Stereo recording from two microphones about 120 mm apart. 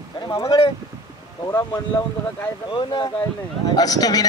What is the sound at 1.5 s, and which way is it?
Speech, 20° left (ahead or behind).